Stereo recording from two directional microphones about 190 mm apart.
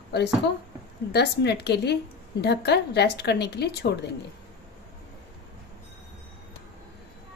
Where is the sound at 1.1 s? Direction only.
60° left (ahead or behind).